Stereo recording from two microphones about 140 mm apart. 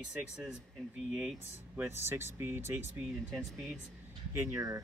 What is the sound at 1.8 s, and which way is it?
Speech, 15° right (ahead or behind).